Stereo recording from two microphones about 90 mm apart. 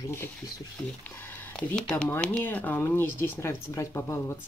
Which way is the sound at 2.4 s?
20° left (ahead or behind).